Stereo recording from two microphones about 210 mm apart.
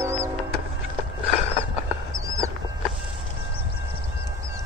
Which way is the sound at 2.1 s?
15° right (ahead or behind).